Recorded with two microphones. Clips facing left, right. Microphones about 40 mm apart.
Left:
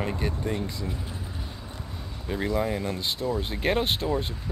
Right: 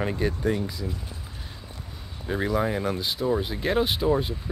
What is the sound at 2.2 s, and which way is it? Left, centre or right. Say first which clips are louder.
Speech: right 2 dB; centre.